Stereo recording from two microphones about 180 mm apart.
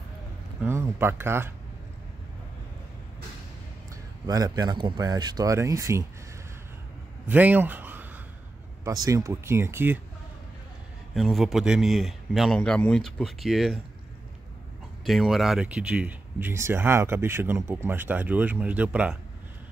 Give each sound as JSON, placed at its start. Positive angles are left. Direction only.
{"t": 0.6, "sound": "speech", "side_deg": -10}
{"t": 3.9, "sound": "a man's voice", "side_deg": -20}
{"t": 7.2, "sound": "a sound", "side_deg": -10}
{"t": 8.8, "sound": "speech", "side_deg": -20}
{"t": 11.1, "sound": "a man's voice", "side_deg": 0}
{"t": 15.0, "sound": "speech", "side_deg": 0}